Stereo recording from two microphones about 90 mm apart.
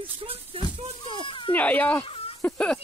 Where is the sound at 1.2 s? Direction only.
65° left (ahead or behind).